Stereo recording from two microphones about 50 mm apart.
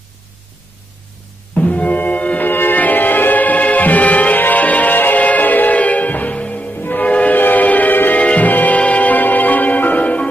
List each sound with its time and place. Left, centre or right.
1.6 s music: left
6.8 s music: left